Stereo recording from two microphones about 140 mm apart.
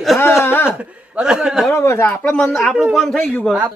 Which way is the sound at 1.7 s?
20° left (ahead or behind).